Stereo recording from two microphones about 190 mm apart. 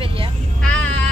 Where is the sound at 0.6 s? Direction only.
5° left (ahead or behind).